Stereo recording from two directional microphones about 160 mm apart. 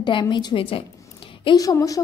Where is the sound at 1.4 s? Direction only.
20° left (ahead or behind).